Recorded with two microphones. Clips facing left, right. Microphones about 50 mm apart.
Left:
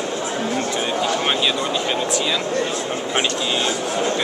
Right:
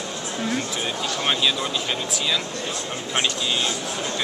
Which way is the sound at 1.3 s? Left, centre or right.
Centre.